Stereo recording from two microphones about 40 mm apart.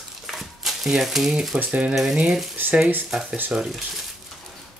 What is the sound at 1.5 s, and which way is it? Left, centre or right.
Speech, right.